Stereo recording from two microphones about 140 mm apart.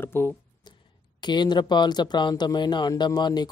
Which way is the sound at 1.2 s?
30° left (ahead or behind).